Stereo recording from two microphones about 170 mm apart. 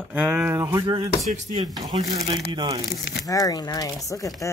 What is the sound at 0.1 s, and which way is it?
Speech, 10° right (ahead or behind).